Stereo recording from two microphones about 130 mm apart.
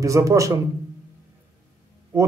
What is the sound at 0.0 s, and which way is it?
Speech, 25° right (ahead or behind).